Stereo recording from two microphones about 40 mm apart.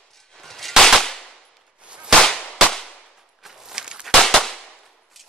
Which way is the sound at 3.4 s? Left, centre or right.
Centre.